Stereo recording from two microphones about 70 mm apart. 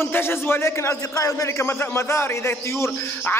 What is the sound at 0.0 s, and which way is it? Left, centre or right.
A man's voice, left.